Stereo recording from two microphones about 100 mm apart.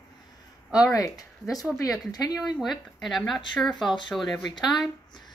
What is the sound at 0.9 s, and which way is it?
Speech, 35° left (ahead or behind).